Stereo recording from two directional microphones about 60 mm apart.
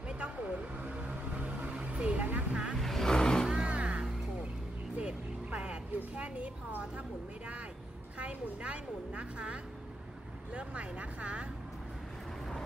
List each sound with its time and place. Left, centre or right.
0.1 s vehicle: right
2.7 s vehicle: centre
3.4 s vehicle: centre
7.0 s a woman's voice: right